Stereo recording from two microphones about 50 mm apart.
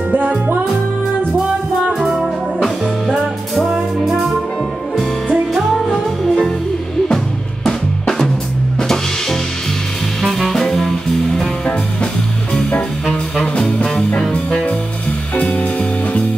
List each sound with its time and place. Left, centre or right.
0.1 s music: right
4.0 s music: centre
5.3 s music: centre
5.8 s music: centre
7.6 s music: centre
11.3 s music: left
13.1 s music: centre
15.3 s music: left